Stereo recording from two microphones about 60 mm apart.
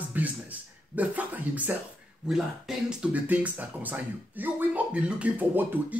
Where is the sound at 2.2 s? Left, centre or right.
Centre.